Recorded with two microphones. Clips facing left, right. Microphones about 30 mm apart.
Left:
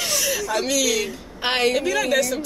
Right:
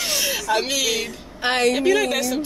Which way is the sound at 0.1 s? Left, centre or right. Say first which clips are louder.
Right 3 dB; right.